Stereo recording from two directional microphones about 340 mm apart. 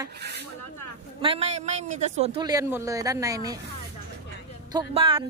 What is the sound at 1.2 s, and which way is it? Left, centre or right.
A man's voice, centre.